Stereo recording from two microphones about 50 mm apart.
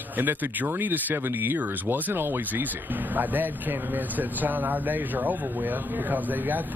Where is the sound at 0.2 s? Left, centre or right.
Right.